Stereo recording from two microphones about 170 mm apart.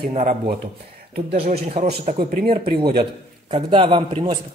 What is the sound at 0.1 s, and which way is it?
Speech, 45° right (ahead or behind).